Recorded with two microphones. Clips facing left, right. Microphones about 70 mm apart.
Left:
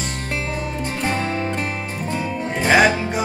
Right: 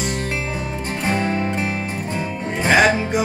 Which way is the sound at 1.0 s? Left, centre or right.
Centre.